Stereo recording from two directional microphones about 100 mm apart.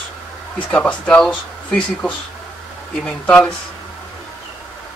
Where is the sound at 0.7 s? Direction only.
10° left (ahead or behind).